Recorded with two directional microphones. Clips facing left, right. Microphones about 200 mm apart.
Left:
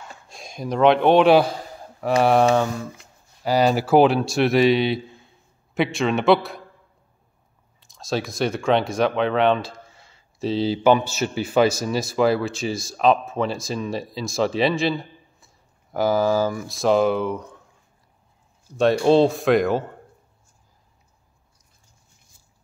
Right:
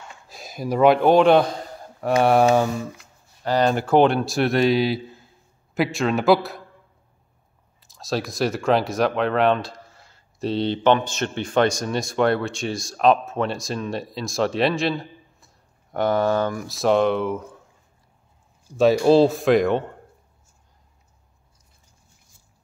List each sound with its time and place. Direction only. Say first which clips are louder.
0.3 s speech: right 2 dB; 5° right (ahead or behind)
3.4 s a man's voice: left 1 dB; 5° left (ahead or behind)
7.8 s speech: even; centre (ahead or behind)
18.7 s speech: right 1 dB; 5° right (ahead or behind)